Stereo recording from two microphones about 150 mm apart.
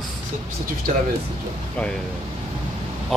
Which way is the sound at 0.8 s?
80° right.